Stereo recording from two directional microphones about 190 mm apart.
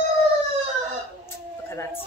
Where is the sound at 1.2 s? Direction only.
15° left (ahead or behind).